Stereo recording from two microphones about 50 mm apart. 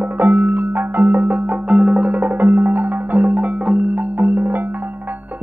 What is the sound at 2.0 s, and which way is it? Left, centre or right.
Music, right.